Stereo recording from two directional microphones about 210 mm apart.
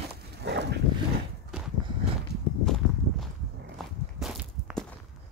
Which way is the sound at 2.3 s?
50° right (ahead or behind).